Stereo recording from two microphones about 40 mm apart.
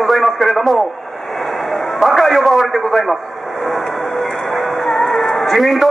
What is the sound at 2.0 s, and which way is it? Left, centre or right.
A man's voice, centre.